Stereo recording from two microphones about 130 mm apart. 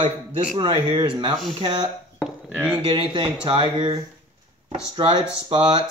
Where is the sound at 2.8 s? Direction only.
40° right (ahead or behind).